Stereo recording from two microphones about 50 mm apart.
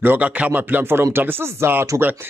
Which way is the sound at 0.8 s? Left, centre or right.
Right.